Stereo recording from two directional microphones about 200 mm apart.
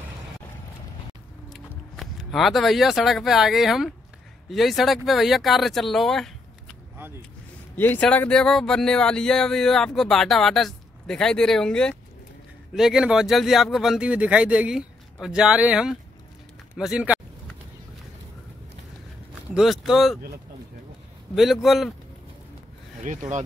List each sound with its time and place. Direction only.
1.5 s speech: centre (ahead or behind)
7.7 s speech: 10° left (ahead or behind); by 17.2 s 5° right (ahead or behind)
19.5 s speech: centre (ahead or behind)
21.4 s speech: centre (ahead or behind)
23.0 s speech: 35° right (ahead or behind)